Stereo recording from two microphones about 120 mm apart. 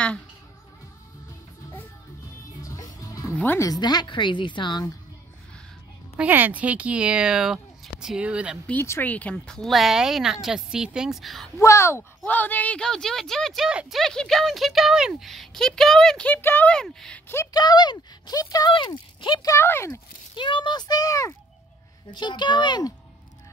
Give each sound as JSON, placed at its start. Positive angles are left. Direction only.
{"t": 2.6, "sound": "music", "side_deg": 25}
{"t": 3.4, "sound": "speech", "side_deg": 25}
{"t": 6.1, "sound": "speech", "side_deg": -15}
{"t": 8.6, "sound": "speech", "side_deg": 20}
{"t": 11.5, "sound": "speech", "side_deg": 25}
{"t": 16.3, "sound": "speech", "side_deg": 15}
{"t": 17.3, "sound": "speech", "side_deg": 20}
{"t": 17.6, "sound": "speech", "side_deg": 35}
{"t": 18.7, "sound": "speech", "side_deg": 40}
{"t": 19.5, "sound": "speech", "side_deg": 20}
{"t": 20.3, "sound": "speech", "side_deg": 45}
{"t": 22.1, "sound": "speech", "side_deg": 40}